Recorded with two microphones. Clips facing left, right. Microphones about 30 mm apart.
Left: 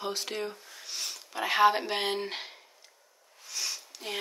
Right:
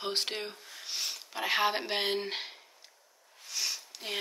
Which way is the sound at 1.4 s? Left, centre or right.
Centre.